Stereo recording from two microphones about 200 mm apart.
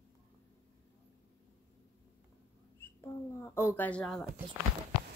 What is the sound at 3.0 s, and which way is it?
Speech, 10° left (ahead or behind).